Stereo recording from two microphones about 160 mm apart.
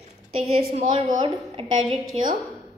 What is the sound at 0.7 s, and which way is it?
A woman's voice, 30° right (ahead or behind).